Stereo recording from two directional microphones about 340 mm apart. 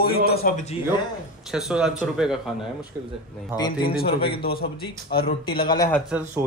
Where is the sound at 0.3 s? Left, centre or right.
Left.